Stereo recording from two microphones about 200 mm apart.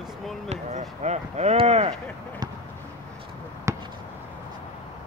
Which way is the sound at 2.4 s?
20° right (ahead or behind).